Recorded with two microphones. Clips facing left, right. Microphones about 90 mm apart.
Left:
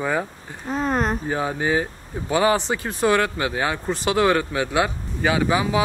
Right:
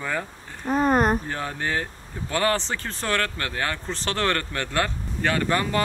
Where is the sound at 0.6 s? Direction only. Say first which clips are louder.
Right 3 dB; 5° right (ahead or behind).